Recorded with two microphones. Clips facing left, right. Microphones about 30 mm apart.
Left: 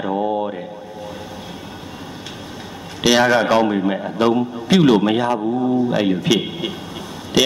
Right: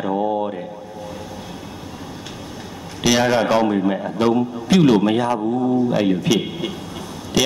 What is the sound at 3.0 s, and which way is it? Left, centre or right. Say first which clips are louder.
A man's voice: left 2 dB; centre.